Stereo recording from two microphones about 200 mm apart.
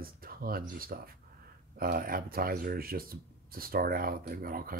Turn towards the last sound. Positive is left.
turn(degrees=-45)  # may be behind; listen again after turning